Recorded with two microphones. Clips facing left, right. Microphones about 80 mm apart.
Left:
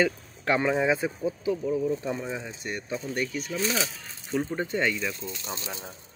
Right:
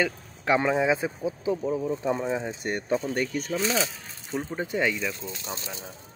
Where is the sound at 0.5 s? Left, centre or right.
Centre.